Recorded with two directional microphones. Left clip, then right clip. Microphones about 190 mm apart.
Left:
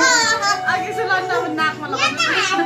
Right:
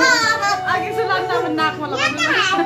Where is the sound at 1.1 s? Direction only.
35° right (ahead or behind).